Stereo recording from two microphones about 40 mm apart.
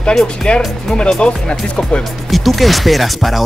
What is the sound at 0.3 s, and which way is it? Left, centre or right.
Speech, left.